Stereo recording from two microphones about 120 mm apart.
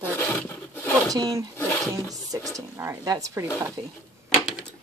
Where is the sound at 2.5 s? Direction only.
25° right (ahead or behind).